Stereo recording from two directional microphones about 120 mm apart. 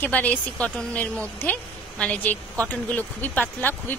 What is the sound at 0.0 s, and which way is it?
A woman's voice, 15° left (ahead or behind).